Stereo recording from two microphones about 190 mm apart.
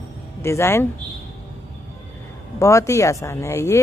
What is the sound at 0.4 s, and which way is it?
Speech, 15° left (ahead or behind).